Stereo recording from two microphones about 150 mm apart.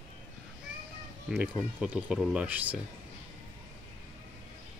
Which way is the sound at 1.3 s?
10° right (ahead or behind).